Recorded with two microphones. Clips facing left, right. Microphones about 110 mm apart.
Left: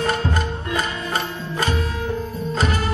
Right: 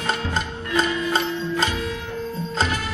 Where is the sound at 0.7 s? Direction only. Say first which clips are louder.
Right 4 dB; 25° right (ahead or behind).